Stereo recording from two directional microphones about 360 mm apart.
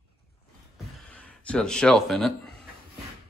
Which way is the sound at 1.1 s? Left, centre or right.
Centre.